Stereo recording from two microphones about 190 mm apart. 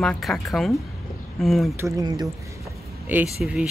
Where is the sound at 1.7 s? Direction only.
15° right (ahead or behind).